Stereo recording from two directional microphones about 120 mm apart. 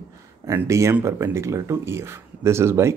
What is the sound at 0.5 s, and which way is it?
Speech, 25° right (ahead or behind).